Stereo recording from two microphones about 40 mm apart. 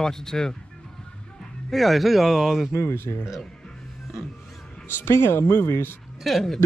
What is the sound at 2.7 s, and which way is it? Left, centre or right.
Speech, left.